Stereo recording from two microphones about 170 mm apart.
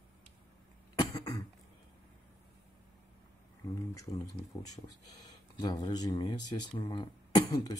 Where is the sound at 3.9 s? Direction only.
20° left (ahead or behind).